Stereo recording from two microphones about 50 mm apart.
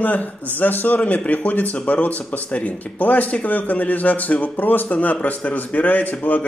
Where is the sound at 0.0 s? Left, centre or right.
Left.